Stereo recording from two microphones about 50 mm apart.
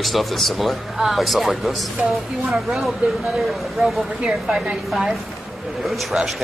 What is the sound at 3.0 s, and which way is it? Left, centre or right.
Speech, right.